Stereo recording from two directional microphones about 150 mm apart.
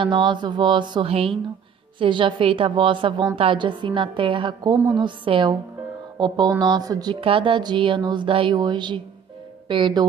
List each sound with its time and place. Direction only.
0.0 s a woman's voice: 30° right (ahead or behind)
6.1 s music: 30° right (ahead or behind)
6.6 s a woman's voice: 25° right (ahead or behind)